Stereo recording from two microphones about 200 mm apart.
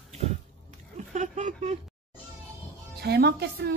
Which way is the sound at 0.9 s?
35° right (ahead or behind).